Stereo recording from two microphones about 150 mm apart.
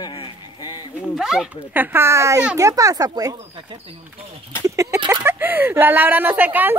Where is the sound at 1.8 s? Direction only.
15° right (ahead or behind).